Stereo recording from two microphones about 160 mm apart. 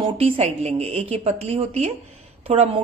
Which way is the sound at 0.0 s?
40° right (ahead or behind).